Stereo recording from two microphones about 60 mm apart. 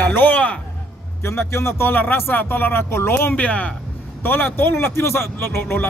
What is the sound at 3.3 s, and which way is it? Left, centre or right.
Speech, left.